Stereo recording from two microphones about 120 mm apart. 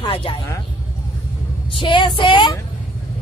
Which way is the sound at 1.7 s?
40° left (ahead or behind).